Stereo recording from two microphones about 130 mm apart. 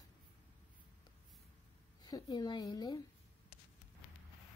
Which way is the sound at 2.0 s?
30° left (ahead or behind).